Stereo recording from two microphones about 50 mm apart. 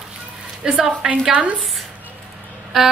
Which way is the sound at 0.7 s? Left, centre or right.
Right.